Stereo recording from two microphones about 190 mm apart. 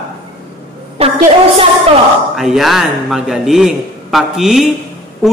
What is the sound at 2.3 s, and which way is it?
A man's voice, centre (ahead or behind).